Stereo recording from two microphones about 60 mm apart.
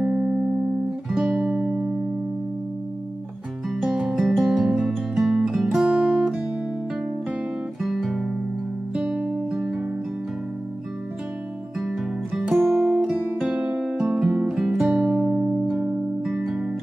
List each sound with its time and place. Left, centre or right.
0.0 s music: centre
3.7 s music: centre
5.9 s guitar: centre
7.8 s guitar: centre
9.0 s music: centre
11.8 s music: centre